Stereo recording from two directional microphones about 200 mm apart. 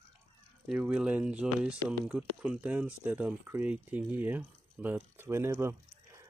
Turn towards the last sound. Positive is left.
turn(degrees=-15)  # may be behind; listen again after turning